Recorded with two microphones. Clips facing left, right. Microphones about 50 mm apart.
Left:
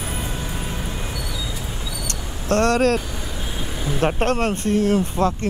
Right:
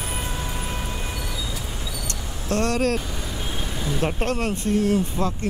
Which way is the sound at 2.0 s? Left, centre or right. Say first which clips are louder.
Left 6 dB; left.